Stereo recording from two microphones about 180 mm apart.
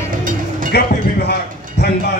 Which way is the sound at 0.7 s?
60° left (ahead or behind).